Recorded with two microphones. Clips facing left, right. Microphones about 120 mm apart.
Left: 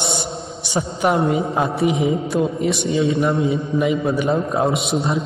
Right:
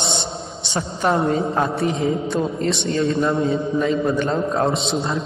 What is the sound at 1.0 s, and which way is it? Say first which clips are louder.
A man's voice: left 1 dB; 5° left (ahead or behind).